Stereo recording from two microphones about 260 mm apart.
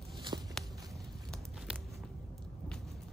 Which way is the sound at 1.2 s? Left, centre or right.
Centre.